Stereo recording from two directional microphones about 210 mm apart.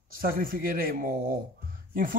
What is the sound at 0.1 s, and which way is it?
A man's voice, 45° right (ahead or behind).